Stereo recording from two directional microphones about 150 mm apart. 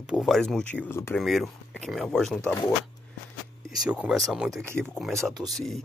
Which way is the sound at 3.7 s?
5° right (ahead or behind).